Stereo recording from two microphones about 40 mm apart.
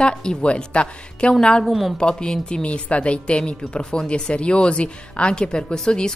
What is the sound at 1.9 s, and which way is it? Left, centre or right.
A woman's voice, centre.